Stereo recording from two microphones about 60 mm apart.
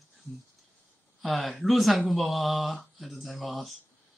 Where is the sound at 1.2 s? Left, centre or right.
Centre.